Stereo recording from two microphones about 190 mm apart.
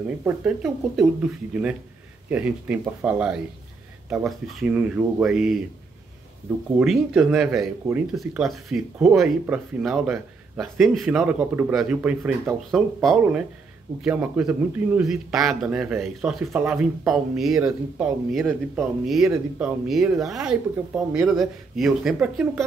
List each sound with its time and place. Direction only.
0.2 s speech: 5° right (ahead or behind)
6.8 s speech: 5° right (ahead or behind)
19.2 s speech: 15° right (ahead or behind)
20.2 s speech: centre (ahead or behind)